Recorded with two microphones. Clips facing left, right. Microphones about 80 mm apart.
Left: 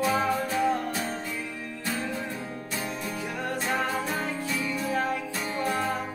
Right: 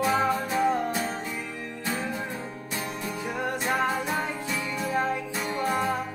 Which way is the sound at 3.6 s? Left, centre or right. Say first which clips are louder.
Right 2 dB; centre.